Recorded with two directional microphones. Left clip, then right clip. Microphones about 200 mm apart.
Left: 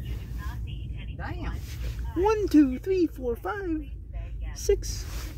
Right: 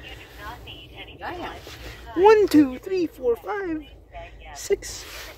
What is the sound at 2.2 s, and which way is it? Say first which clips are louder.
Speech: right 7 dB; 20° right (ahead or behind).